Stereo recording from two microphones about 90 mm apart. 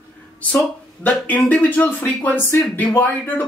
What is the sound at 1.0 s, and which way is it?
Speech, 15° left (ahead or behind).